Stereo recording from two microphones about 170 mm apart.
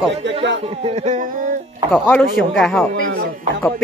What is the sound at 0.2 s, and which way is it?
Speech, 90° right.